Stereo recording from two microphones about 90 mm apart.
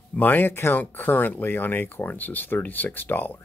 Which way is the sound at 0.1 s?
20° left (ahead or behind).